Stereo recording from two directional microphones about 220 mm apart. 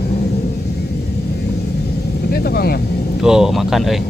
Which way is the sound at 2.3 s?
45° left (ahead or behind).